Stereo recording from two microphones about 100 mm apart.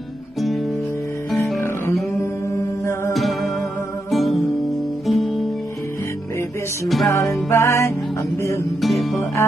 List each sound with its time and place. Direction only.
1.4 s music: 25° left (ahead or behind)
3.1 s music: centre (ahead or behind)
4.1 s guitar: centre (ahead or behind)
5.0 s music: centre (ahead or behind)
7.1 s music: 20° left (ahead or behind)
8.8 s music: centre (ahead or behind)